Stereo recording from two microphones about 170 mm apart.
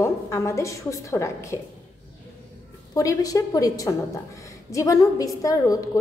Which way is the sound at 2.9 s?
20° left (ahead or behind).